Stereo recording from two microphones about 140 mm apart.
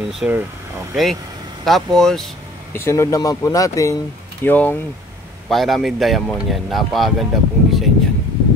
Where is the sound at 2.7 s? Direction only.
20° left (ahead or behind).